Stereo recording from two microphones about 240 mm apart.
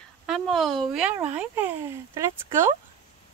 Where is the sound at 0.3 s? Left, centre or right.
Centre.